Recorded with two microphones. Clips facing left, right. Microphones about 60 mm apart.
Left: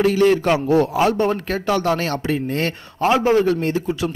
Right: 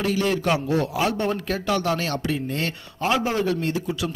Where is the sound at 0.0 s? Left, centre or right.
Left.